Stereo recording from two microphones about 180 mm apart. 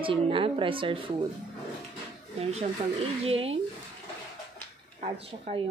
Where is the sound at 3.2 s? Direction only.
35° right (ahead or behind).